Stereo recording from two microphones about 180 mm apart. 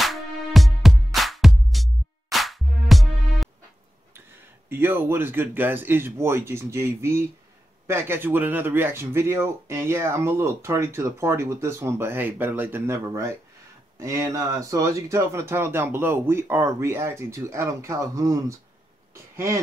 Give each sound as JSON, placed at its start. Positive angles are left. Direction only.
{"t": 0.0, "sound": "music", "side_deg": 0}
{"t": 4.6, "sound": "speech", "side_deg": -10}